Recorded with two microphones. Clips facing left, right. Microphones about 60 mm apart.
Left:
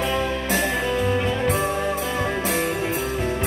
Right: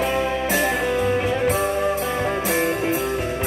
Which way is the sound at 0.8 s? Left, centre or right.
Right.